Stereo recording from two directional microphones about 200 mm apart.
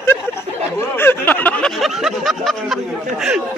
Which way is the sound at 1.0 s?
10° left (ahead or behind).